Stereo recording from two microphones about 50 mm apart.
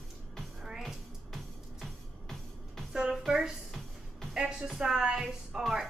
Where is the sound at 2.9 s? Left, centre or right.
Centre.